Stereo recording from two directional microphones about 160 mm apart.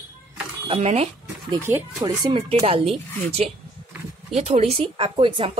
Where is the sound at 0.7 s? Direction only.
40° right (ahead or behind).